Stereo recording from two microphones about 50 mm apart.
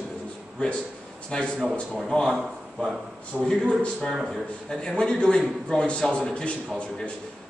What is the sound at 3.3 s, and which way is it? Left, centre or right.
Speech, right.